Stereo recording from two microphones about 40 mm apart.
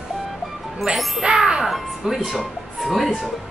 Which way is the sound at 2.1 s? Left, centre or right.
Centre.